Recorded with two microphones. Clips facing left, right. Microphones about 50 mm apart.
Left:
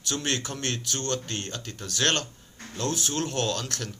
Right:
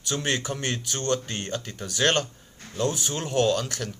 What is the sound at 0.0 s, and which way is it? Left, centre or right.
A man's voice, centre.